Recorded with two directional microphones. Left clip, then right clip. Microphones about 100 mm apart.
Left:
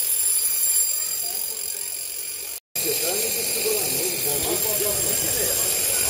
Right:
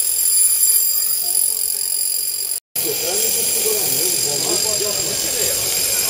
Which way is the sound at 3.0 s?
20° left (ahead or behind).